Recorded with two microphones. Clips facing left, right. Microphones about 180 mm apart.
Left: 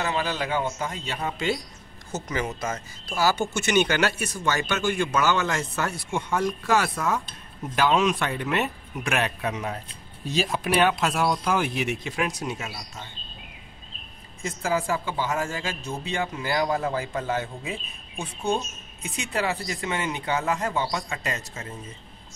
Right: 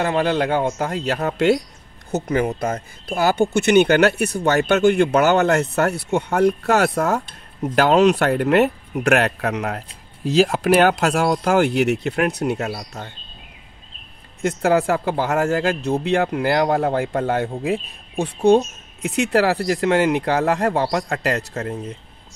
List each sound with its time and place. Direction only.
0.0 s speech: 55° right (ahead or behind)
2.0 s speech: 60° right (ahead or behind)
14.4 s speech: 65° right (ahead or behind)